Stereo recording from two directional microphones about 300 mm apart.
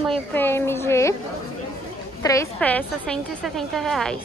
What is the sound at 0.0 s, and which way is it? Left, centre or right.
Speech, centre.